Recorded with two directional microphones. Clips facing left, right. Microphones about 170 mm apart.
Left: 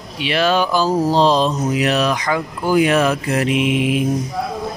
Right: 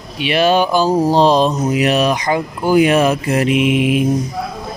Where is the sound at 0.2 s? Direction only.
15° right (ahead or behind).